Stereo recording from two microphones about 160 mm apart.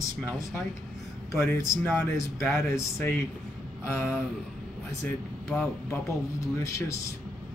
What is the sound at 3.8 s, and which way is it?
Speech, 15° left (ahead or behind).